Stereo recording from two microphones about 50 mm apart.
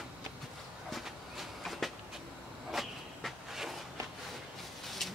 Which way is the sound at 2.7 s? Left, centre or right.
Centre.